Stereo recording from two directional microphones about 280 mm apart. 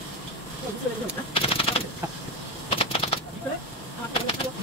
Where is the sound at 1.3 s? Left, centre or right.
Centre.